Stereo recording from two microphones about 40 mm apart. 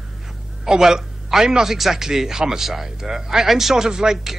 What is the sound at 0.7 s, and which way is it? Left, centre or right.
Speech, centre.